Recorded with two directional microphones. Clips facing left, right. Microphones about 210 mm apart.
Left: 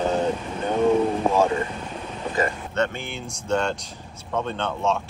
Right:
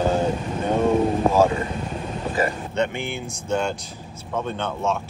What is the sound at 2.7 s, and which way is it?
Speech, 15° right (ahead or behind).